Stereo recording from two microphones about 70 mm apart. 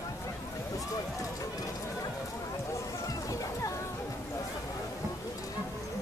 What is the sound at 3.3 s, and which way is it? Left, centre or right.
Music, left.